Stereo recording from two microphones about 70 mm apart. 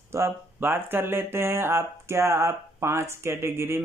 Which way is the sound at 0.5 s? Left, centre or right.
Right.